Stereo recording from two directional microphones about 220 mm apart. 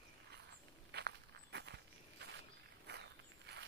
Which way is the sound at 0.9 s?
50° right (ahead or behind).